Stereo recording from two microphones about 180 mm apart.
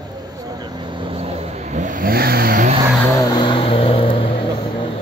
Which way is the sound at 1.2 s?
45° right (ahead or behind).